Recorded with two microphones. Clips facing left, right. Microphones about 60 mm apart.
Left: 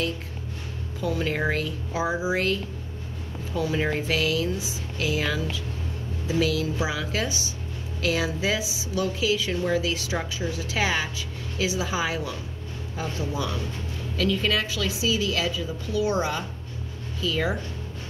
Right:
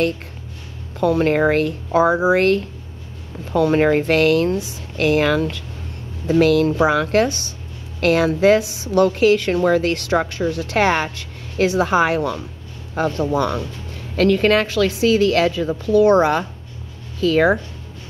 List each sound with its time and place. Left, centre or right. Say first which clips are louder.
1.0 s a woman's voice: right 10 dB; right